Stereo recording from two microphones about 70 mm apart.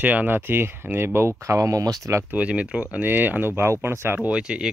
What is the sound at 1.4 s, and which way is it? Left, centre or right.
Speech, right.